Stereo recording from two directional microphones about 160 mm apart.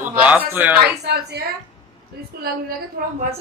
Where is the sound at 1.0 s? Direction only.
90° right.